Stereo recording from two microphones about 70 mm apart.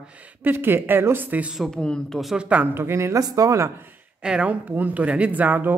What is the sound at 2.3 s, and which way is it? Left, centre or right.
Speech, centre.